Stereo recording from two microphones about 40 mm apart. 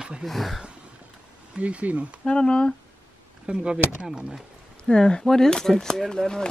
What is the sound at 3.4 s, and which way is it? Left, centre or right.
Speech, right.